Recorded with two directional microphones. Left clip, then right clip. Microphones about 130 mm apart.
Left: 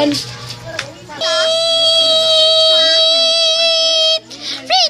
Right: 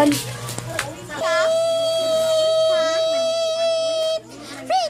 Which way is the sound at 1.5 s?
5° right (ahead or behind).